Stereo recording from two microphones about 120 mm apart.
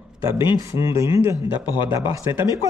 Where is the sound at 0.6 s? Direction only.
25° right (ahead or behind).